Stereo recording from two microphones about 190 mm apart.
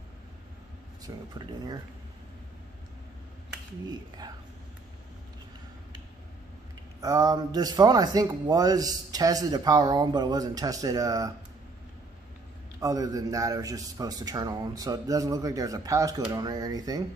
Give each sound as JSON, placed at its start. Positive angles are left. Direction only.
{"t": 1.1, "sound": "speech", "side_deg": -20}
{"t": 7.0, "sound": "speech", "side_deg": -20}
{"t": 12.8, "sound": "speech", "side_deg": -20}